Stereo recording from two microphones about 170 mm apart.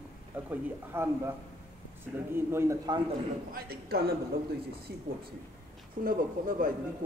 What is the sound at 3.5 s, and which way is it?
Speech, 65° right (ahead or behind).